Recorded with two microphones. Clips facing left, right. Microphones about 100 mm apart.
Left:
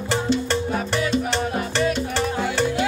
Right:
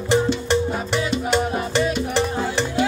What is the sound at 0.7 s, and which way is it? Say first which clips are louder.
Music: left 1 dB; 20° right (ahead or behind).